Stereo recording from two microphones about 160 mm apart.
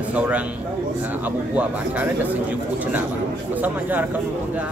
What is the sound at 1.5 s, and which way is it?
Speech, 10° right (ahead or behind).